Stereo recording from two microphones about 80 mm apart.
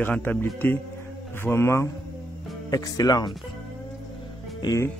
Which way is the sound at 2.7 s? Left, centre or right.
Left.